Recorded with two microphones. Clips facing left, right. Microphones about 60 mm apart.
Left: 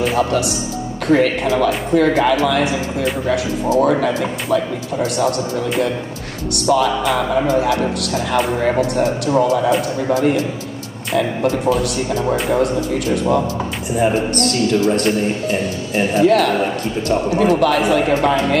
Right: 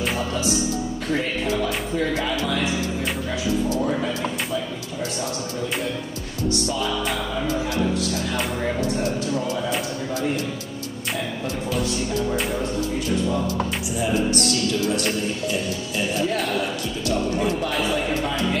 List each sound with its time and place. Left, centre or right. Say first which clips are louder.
0.2 s a man's voice: left 6 dB; left
9.2 s a man's voice: left 10 dB; left
12.4 s a man's voice: left 8 dB; left
13.9 s a man's voice: left 6 dB; left
16.3 s speech: left 11 dB; left
16.5 s a man's voice: left 6 dB; left
17.4 s a man's voice: left 9 dB; left
18.0 s a man's voice: left 8 dB; left